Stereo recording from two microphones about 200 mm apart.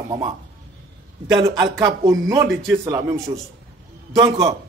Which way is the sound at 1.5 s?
15° right (ahead or behind).